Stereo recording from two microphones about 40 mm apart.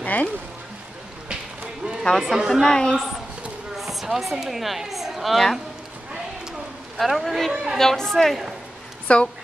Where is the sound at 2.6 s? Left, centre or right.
Centre.